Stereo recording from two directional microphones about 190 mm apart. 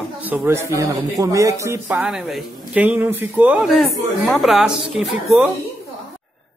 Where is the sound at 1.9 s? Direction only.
5° right (ahead or behind).